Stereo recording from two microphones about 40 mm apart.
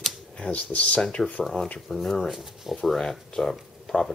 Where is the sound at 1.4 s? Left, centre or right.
Centre.